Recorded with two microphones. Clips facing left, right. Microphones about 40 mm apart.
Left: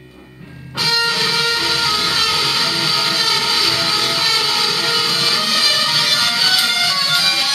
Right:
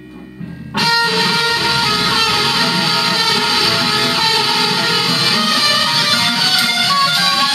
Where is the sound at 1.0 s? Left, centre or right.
Right.